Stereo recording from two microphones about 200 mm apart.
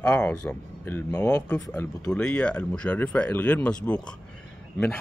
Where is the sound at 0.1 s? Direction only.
5° left (ahead or behind).